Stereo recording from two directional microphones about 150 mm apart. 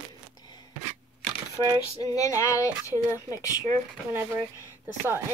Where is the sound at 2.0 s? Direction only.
20° left (ahead or behind).